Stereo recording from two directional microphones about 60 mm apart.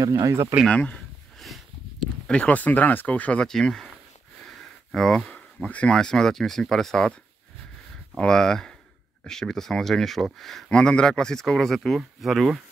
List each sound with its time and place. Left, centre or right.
0.0 s speech: right
0.7 s speech: left
2.2 s speech: centre
3.4 s speech: centre
4.5 s a sound: centre
5.9 s speech: centre
8.2 s speech: centre
10.7 s speech: centre